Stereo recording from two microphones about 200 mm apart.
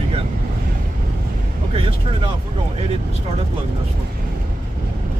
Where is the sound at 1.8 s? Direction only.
25° right (ahead or behind).